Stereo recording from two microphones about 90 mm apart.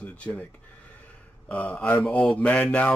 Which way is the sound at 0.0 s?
15° left (ahead or behind).